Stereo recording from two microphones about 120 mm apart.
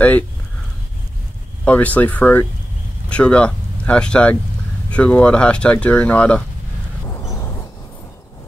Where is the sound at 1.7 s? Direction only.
10° left (ahead or behind).